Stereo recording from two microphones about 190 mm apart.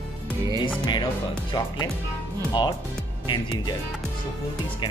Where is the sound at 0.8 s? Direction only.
20° left (ahead or behind).